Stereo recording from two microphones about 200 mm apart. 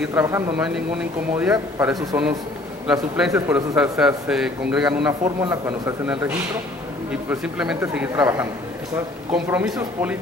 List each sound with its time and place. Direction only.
0.0 s a man's voice: 10° right (ahead or behind)
1.5 s a man's voice: 15° right (ahead or behind)
2.9 s a man's voice: 5° right (ahead or behind)
4.8 s a man's voice: 20° right (ahead or behind)